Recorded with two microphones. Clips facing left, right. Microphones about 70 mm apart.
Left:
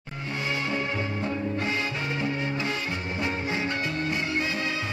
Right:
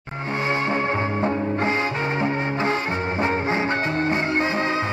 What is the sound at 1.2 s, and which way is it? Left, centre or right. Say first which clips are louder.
Music: right 6 dB; right.